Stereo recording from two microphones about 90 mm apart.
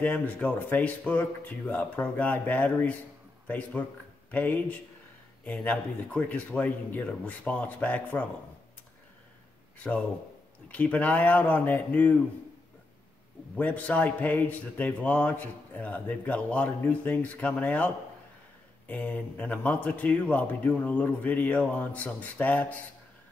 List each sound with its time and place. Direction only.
0.0 s a man's voice: 15° left (ahead or behind)
10.7 s a man's voice: 15° left (ahead or behind)
13.6 s a man's voice: 15° left (ahead or behind)